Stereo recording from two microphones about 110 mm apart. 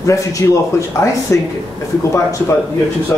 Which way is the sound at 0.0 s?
30° left (ahead or behind).